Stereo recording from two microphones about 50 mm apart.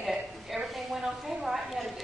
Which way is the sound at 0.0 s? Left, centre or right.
Centre.